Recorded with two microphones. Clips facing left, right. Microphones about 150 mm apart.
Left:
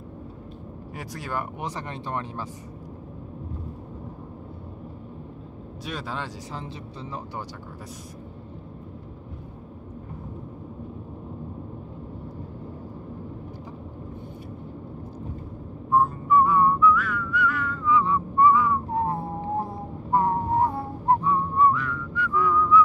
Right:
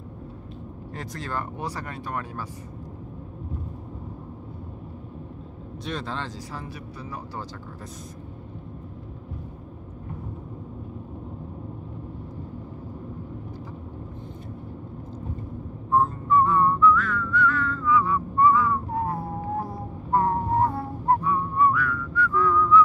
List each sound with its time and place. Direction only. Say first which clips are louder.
0.9 s speech: even; 10° left (ahead or behind)
5.9 s speech: right 1 dB; 10° left (ahead or behind)
15.9 s whistling: left 1 dB; 10° left (ahead or behind)
21.2 s whistling: left 1 dB; 25° left (ahead or behind); by 22.8 s 10° left (ahead or behind)